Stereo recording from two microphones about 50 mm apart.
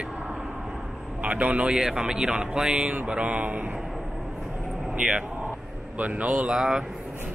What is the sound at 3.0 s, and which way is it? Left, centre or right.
Mantra, right.